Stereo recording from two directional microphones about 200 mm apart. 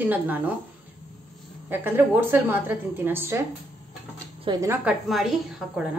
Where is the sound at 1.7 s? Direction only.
10° right (ahead or behind).